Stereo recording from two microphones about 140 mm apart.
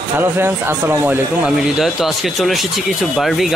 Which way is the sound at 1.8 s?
Centre (ahead or behind).